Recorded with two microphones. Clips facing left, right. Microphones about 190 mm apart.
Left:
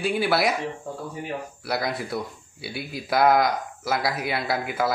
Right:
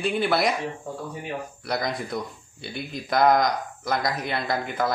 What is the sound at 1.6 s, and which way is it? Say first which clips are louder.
Speech: left 1 dB; 5° left (ahead or behind).